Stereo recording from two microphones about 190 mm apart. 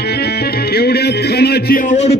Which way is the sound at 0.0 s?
55° left (ahead or behind).